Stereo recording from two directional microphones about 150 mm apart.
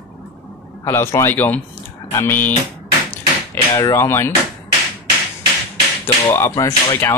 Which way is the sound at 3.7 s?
20° left (ahead or behind).